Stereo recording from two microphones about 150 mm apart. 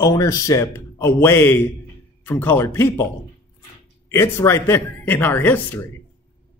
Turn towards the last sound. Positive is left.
turn(degrees=10)  # may be behind; listen again after turning